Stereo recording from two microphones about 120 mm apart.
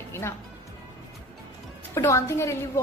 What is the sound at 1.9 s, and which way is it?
Speech, 25° left (ahead or behind).